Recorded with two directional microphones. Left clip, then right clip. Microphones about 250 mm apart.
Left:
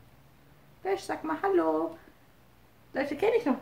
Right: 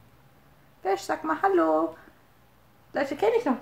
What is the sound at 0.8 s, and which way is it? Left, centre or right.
A woman's voice, centre.